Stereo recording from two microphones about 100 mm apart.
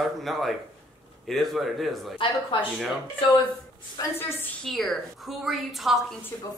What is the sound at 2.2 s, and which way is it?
Speech, 55° left (ahead or behind).